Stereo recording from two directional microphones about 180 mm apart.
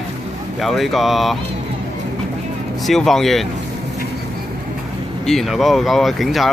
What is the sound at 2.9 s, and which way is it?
Speech, centre (ahead or behind).